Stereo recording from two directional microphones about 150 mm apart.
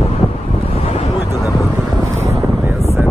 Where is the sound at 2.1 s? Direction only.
20° right (ahead or behind).